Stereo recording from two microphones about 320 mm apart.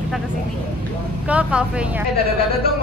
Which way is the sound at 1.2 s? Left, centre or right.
Centre.